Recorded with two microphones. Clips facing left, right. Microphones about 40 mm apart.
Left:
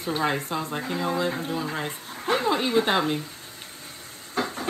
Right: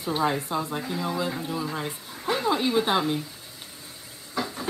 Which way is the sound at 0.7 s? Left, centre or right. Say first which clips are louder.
Left 2 dB; left.